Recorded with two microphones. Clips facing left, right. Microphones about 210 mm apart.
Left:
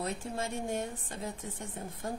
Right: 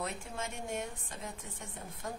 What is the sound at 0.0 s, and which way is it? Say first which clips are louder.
Speech: left 4 dB; 35° left (ahead or behind).